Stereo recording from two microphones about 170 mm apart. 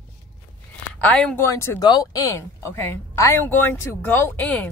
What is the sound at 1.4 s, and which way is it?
A woman's voice, 15° left (ahead or behind).